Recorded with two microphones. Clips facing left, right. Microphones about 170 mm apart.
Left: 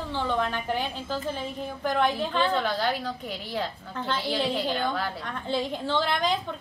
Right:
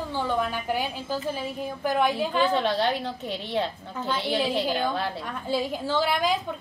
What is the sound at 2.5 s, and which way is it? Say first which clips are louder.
A woman's voice: right 2 dB; 25° right (ahead or behind).